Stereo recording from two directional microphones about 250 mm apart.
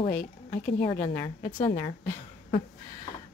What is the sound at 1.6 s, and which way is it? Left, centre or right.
Speech, left.